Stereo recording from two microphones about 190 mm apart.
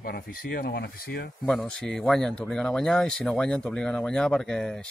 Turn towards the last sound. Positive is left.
turn(degrees=5)  # may be behind; listen again after turning